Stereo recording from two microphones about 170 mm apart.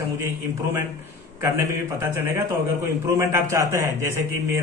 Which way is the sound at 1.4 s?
15° right (ahead or behind).